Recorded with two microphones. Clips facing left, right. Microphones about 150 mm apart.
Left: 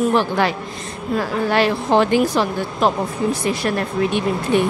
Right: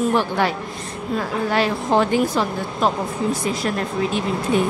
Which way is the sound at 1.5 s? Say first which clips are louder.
Left 2 dB; 75° left (ahead or behind).